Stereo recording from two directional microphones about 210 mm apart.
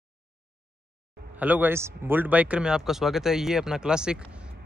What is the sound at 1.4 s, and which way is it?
Speech, 10° right (ahead or behind).